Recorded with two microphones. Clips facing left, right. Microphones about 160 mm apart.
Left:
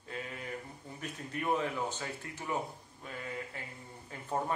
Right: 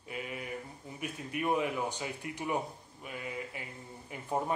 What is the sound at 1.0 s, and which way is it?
Speech, 10° right (ahead or behind).